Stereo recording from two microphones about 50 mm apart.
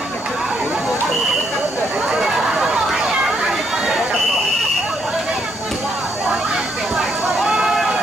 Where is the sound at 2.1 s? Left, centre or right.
Centre.